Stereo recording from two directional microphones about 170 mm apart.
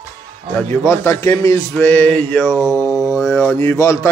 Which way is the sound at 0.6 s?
15° left (ahead or behind).